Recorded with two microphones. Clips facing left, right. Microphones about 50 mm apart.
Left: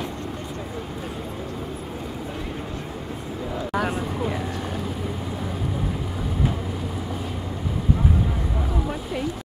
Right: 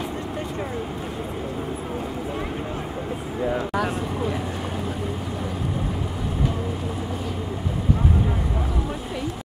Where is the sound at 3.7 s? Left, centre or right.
Centre.